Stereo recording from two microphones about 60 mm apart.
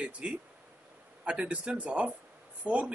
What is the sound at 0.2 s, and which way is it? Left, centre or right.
Speech, right.